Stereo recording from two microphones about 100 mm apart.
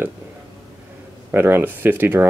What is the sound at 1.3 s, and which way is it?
Speech, 20° right (ahead or behind).